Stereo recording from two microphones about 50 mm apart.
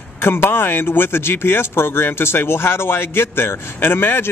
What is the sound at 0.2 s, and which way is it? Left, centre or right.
Speech, left.